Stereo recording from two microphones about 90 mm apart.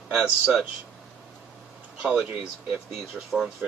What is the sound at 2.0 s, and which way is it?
Speech, 15° right (ahead or behind).